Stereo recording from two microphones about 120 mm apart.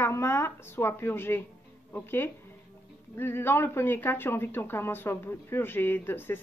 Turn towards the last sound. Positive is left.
turn(degrees=20)  # may be behind; listen again after turning